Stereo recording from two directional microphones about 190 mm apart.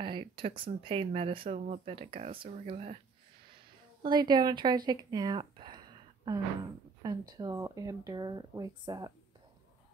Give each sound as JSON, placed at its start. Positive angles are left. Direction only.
{"t": 0.0, "sound": "speech", "side_deg": -25}
{"t": 4.0, "sound": "speech", "side_deg": -25}